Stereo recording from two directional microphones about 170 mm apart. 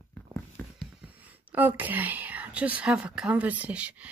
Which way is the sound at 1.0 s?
10° right (ahead or behind).